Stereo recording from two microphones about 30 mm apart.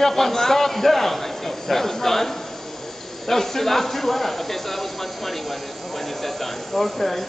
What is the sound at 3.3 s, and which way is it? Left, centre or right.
Speech, centre.